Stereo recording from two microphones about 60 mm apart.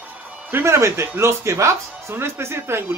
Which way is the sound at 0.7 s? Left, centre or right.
Right.